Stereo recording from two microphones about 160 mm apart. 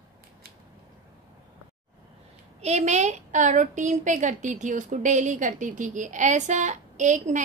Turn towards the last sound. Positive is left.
turn(degrees=-50)  # may be behind; listen again after turning